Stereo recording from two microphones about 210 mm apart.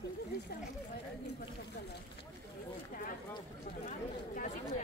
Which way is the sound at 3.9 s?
40° left (ahead or behind).